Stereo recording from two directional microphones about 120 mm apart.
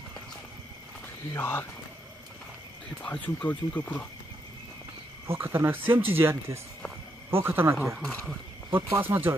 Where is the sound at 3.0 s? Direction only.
10° left (ahead or behind).